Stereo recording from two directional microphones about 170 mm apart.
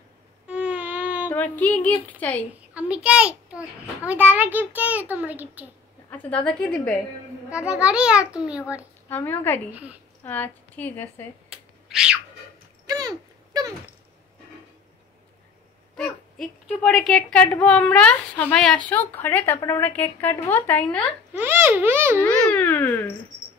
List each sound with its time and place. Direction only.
0.5 s a sound: 5° right (ahead or behind)
1.3 s a woman's voice: 10° left (ahead or behind)
2.7 s a child's voice: 5° right (ahead or behind)
6.0 s a woman's voice: 10° left (ahead or behind)
7.4 s a child's voice: 5° right (ahead or behind)
9.1 s a woman's voice: 10° left (ahead or behind)
9.7 s a child's voice: 10° right (ahead or behind)
10.2 s a woman's voice: 10° left (ahead or behind)
11.5 s a sound: 5° right (ahead or behind)
12.8 s a sound: 20° right (ahead or behind)
16.8 s a woman's voice: 5° left (ahead or behind)
21.3 s a child's voice: 10° right (ahead or behind)
22.5 s a woman's voice: 10° left (ahead or behind)